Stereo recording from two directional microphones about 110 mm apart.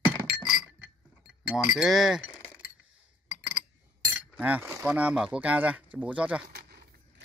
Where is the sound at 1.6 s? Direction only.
5° right (ahead or behind).